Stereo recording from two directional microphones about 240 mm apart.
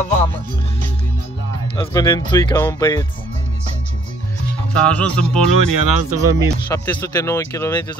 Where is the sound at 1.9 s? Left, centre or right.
Centre.